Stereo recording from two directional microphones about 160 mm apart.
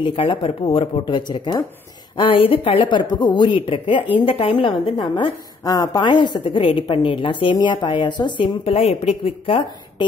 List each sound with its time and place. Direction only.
0.0 s speech: 30° left (ahead or behind)